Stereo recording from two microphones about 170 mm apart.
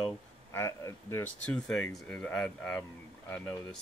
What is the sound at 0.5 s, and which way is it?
Speech, 15° left (ahead or behind).